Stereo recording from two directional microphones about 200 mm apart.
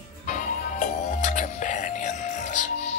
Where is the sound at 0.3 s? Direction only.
40° left (ahead or behind).